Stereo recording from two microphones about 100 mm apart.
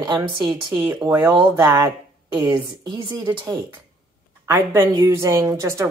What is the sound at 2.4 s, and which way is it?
A woman's voice, 50° right (ahead or behind).